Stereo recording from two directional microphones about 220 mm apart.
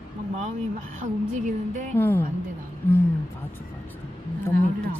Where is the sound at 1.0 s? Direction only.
35° right (ahead or behind).